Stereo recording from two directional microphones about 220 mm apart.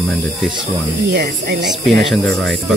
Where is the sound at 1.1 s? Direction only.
50° right (ahead or behind).